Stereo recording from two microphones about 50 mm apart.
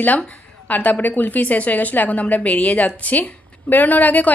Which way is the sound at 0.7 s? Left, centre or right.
Left.